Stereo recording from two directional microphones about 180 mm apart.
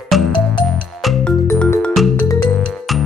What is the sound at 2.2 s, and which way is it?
Music, 15° left (ahead or behind).